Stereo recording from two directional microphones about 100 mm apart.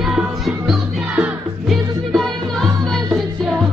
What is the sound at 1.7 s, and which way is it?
Music, centre (ahead or behind).